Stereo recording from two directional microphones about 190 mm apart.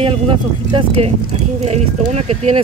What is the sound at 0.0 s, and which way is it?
Speech, 25° right (ahead or behind).